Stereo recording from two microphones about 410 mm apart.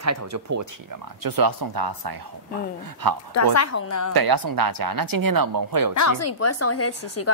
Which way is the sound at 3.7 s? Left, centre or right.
Left.